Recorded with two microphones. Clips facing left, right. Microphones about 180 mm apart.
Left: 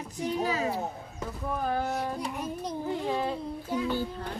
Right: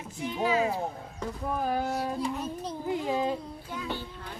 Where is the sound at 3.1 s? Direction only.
15° right (ahead or behind).